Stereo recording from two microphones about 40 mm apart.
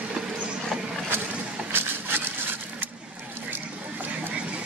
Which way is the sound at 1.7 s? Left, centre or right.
Right.